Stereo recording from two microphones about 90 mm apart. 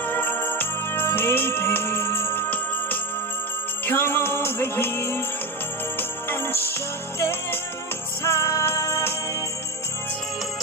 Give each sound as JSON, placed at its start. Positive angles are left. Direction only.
{"t": 0.0, "sound": "music", "side_deg": 20}
{"t": 3.8, "sound": "music", "side_deg": 25}
{"t": 5.9, "sound": "jingle bell", "side_deg": 25}
{"t": 8.2, "sound": "music", "side_deg": 30}